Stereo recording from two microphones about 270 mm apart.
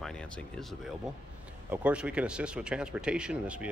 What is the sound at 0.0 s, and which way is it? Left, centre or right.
Speech, centre.